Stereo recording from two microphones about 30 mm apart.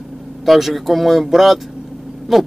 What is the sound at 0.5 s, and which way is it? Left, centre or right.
Speech, centre.